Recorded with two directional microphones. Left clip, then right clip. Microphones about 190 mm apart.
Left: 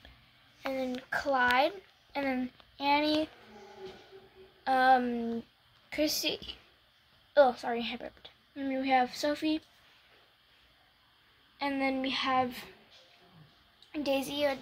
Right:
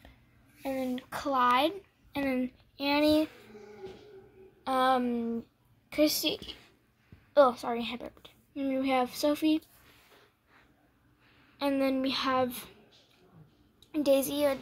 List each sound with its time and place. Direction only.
0.6 s a woman's voice: 10° right (ahead or behind)
2.8 s a woman's voice: 10° right (ahead or behind)
4.6 s a woman's voice: 10° right (ahead or behind)
11.5 s a woman's voice: 20° right (ahead or behind)
13.9 s a woman's voice: 20° right (ahead or behind)